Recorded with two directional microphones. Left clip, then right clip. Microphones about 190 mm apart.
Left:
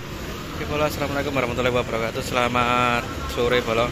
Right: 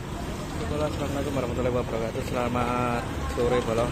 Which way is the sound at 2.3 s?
10° left (ahead or behind).